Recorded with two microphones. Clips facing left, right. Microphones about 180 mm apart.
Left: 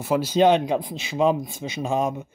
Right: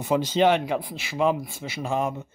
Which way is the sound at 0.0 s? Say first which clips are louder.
Left 2 dB; 5° left (ahead or behind).